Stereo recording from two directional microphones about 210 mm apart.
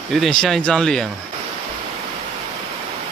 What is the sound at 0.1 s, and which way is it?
Speech, centre (ahead or behind).